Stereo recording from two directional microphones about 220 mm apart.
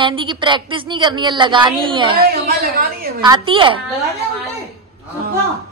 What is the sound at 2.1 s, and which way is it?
Speech, 45° right (ahead or behind).